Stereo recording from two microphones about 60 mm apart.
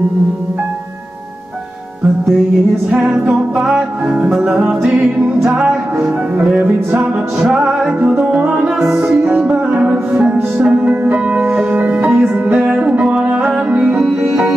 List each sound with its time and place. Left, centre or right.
2.9 s music: centre
4.4 s music: centre